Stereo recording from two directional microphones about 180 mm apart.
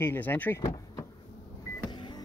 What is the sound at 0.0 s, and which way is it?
Speech, 10° left (ahead or behind).